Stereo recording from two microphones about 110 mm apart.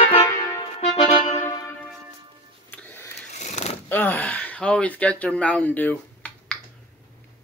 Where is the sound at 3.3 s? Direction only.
90° left.